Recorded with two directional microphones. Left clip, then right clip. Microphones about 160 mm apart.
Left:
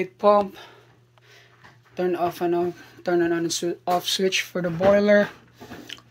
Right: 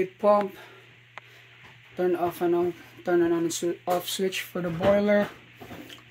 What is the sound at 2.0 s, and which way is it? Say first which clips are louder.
Speech: left 2 dB; 5° right (ahead or behind).